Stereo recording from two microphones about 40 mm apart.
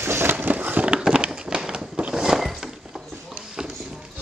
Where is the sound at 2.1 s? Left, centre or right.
Centre.